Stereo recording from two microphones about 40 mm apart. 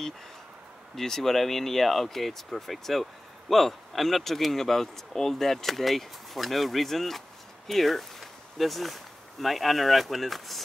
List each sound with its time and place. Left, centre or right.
0.9 s speech: centre